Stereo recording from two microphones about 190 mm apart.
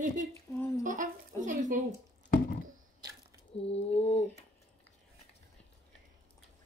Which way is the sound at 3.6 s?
30° left (ahead or behind).